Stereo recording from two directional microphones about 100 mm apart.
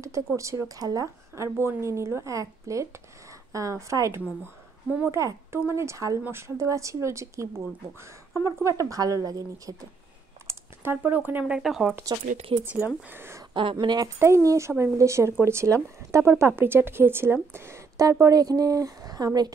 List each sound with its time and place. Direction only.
0.4 s a woman's voice: 30° right (ahead or behind)
10.4 s a sound: 25° right (ahead or behind)
11.1 s speech: 20° right (ahead or behind)
11.5 s speech: 5° right (ahead or behind)
11.9 s a woman's voice: 30° right (ahead or behind)
12.6 s a woman's voice: 20° right (ahead or behind)
13.5 s speech: 55° right (ahead or behind)
14.0 s a woman's voice: 30° right (ahead or behind)